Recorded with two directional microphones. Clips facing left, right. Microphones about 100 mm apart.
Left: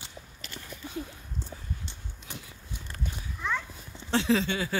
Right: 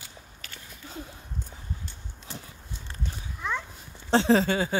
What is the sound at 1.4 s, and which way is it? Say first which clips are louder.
Dog: left 1 dB; 30° left (ahead or behind).